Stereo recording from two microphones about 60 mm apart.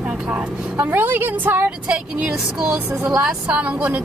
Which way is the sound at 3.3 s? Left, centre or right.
Right.